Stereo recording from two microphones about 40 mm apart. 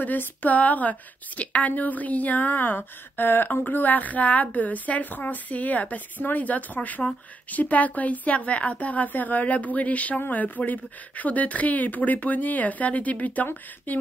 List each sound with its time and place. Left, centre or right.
0.4 s speech: left
3.6 s speech: left